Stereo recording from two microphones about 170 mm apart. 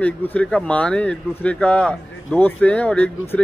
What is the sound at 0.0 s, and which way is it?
Speech, 10° left (ahead or behind).